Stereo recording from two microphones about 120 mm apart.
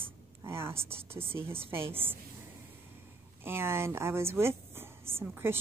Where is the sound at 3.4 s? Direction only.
20° right (ahead or behind).